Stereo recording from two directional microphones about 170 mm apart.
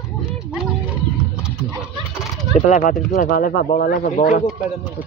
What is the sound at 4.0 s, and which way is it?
Speech, 45° left (ahead or behind).